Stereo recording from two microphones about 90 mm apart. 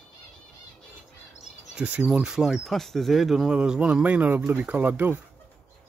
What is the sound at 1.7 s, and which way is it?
Speech, 15° right (ahead or behind).